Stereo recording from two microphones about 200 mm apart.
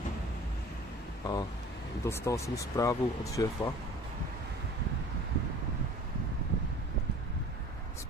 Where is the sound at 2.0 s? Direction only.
15° left (ahead or behind).